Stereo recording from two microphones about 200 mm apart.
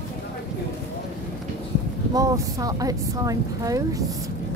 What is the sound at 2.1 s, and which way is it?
Speech, 15° right (ahead or behind).